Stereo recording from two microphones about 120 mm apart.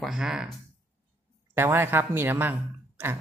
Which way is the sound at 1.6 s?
20° right (ahead or behind).